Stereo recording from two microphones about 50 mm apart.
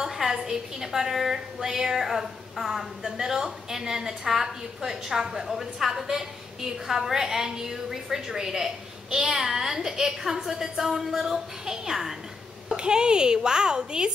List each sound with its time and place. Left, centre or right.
0.0 s a woman's voice: centre